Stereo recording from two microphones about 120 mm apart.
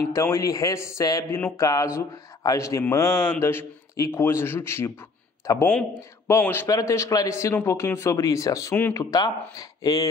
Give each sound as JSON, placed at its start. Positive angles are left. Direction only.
{"t": 0.1, "sound": "a man's voice", "side_deg": 25}
{"t": 8.9, "sound": "speech", "side_deg": 30}